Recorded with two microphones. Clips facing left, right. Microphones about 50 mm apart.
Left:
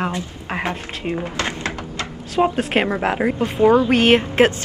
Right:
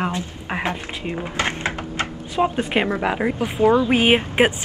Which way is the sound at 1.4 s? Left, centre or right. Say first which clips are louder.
Right 1 dB; right.